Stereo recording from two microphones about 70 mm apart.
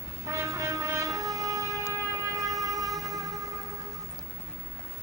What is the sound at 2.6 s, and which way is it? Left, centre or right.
Vehicle, centre.